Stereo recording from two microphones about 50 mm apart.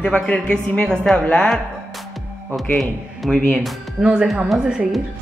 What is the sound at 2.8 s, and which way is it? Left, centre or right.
Speech, centre.